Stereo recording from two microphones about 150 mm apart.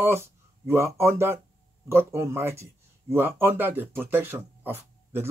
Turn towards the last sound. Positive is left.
turn(degrees=-15)  # may be behind; listen again after turning